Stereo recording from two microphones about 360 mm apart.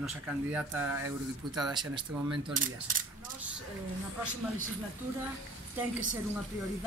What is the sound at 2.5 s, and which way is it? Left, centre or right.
Speech, right.